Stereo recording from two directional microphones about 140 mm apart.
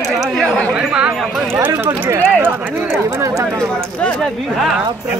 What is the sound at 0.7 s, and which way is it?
Chatter, 5° right (ahead or behind).